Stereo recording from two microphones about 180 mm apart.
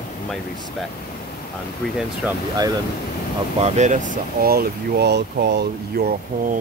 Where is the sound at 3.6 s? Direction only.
40° right (ahead or behind); by 6.1 s 70° right (ahead or behind).